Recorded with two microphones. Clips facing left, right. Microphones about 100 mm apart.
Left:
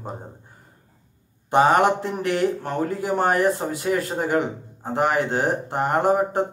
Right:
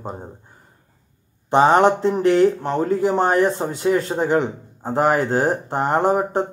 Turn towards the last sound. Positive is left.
turn(degrees=-30)  # may be behind; listen again after turning